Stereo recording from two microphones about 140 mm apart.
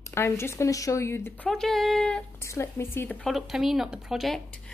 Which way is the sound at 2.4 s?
20° left (ahead or behind).